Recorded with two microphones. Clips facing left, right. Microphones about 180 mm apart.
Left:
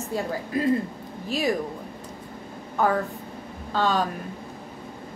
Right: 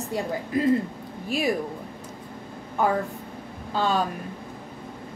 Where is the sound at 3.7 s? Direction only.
10° right (ahead or behind).